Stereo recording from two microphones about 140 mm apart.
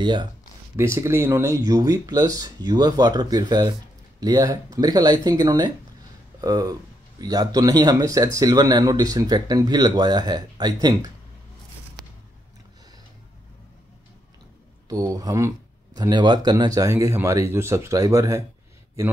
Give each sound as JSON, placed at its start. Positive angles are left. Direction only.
{"t": 0.0, "sound": "speech", "side_deg": -30}
{"t": 0.7, "sound": "speech", "side_deg": -20}
{"t": 14.9, "sound": "speech", "side_deg": -25}